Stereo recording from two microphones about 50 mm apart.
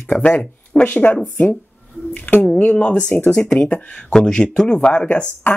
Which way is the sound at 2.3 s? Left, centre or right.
Left.